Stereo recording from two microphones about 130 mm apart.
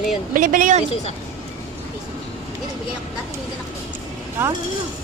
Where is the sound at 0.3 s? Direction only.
90° right.